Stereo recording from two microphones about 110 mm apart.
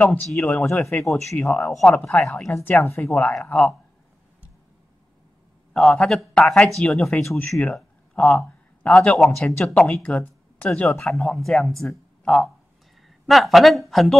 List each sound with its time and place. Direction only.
0.0 s a man's voice: 15° left (ahead or behind)
0.3 s speech: 5° left (ahead or behind)
0.7 s speech: 25° left (ahead or behind)
1.4 s a man's voice: 5° left (ahead or behind)
2.5 s speech: 20° left (ahead or behind)
3.1 s speech: 10° left (ahead or behind)
5.7 s a man's voice: 5° left (ahead or behind)